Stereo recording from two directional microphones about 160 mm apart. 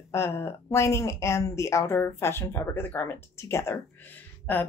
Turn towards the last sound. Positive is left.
turn(degrees=10)  # may be behind; listen again after turning